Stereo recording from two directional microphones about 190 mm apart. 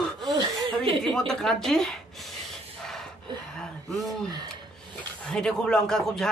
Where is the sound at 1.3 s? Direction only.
Centre (ahead or behind).